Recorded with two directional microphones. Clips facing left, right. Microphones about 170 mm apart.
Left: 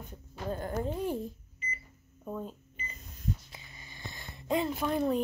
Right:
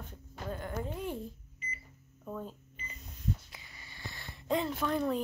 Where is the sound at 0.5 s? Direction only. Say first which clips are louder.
Left 5 dB; 40° left (ahead or behind).